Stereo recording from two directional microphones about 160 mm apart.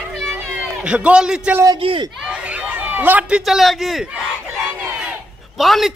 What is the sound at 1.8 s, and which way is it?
Speech, 35° right (ahead or behind).